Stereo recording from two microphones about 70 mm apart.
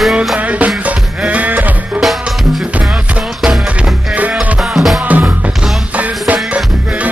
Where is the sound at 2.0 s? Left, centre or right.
Centre.